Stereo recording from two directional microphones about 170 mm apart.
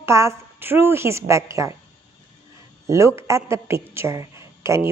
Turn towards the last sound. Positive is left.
turn(degrees=-15)  # may be behind; listen again after turning